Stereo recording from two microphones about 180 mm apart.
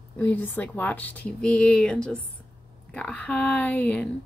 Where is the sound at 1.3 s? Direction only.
5° left (ahead or behind).